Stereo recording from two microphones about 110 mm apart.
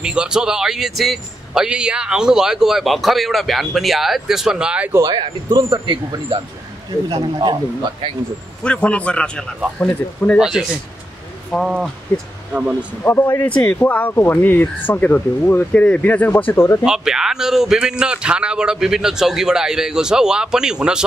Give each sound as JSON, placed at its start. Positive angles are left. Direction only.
{"t": 0.0, "sound": "speech", "side_deg": -10}
{"t": 5.0, "sound": "speech", "side_deg": -40}
{"t": 8.6, "sound": "speech", "side_deg": 10}
{"t": 10.4, "sound": "speech", "side_deg": -5}
{"t": 11.5, "sound": "speech", "side_deg": 5}
{"t": 12.1, "sound": "speech", "side_deg": 20}
{"t": 16.8, "sound": "speech", "side_deg": -5}